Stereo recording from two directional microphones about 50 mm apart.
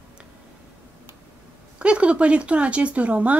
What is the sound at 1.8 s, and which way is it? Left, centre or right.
Speech, right.